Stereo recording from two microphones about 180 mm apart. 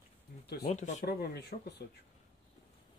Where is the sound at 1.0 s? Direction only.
60° left (ahead or behind).